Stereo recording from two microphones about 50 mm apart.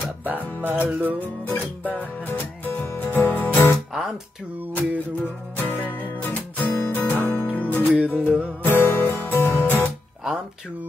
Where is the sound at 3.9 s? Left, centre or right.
Centre.